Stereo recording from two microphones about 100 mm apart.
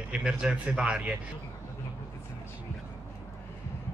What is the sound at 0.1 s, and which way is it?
Speech, 10° right (ahead or behind).